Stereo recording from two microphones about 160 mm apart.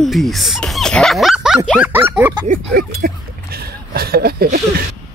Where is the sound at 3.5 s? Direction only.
75° right (ahead or behind).